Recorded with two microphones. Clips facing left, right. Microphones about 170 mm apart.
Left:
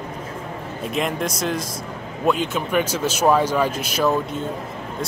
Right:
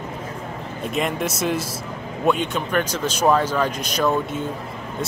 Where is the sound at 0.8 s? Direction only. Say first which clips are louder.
Even; centre (ahead or behind).